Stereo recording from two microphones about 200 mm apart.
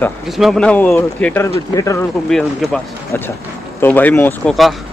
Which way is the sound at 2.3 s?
Centre (ahead or behind).